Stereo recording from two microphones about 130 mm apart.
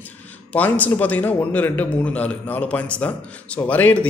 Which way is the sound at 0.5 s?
10° left (ahead or behind).